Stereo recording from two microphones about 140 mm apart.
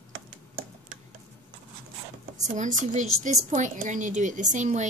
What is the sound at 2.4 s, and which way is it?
A woman's voice, 60° right (ahead or behind).